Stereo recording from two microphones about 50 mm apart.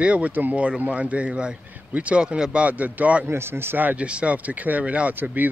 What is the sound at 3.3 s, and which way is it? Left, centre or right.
Speech, right.